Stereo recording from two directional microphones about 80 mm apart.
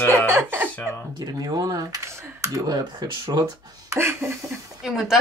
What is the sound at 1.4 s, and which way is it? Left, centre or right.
Speech, right.